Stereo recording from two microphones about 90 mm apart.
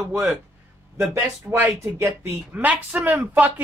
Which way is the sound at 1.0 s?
30° right (ahead or behind).